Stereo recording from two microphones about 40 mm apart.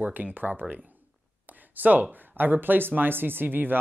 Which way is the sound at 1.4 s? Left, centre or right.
Right.